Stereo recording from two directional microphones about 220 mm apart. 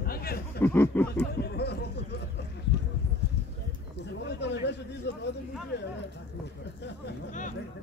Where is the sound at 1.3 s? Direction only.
50° left (ahead or behind).